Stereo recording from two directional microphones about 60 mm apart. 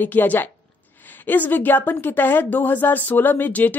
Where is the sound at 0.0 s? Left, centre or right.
Left.